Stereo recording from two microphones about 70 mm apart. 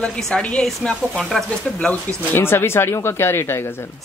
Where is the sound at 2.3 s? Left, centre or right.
Left.